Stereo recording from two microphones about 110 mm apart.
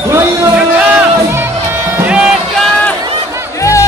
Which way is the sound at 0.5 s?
15° right (ahead or behind).